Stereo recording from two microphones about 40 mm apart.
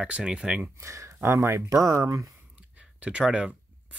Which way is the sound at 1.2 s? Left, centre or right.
Right.